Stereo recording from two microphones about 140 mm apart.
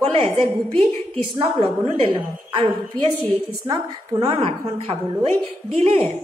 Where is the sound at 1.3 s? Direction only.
35° right (ahead or behind).